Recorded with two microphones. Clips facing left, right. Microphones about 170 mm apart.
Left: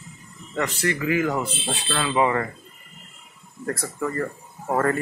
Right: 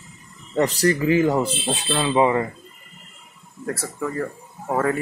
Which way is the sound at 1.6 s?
20° right (ahead or behind).